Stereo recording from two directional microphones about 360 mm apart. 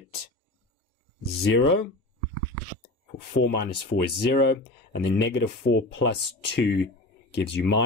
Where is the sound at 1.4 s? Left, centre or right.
Left.